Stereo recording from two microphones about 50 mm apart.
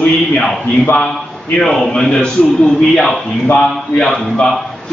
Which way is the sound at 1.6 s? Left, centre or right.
Centre.